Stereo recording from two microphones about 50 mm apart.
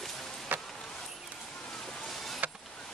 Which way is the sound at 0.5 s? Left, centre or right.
Right.